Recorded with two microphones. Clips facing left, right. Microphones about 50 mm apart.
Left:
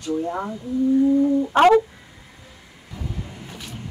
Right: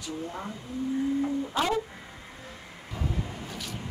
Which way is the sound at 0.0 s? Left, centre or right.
Left.